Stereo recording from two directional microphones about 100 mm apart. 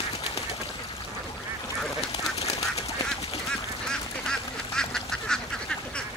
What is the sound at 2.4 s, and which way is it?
Duck, 90° left.